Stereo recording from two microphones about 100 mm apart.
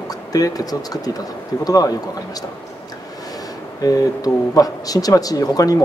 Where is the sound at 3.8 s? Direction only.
40° left (ahead or behind).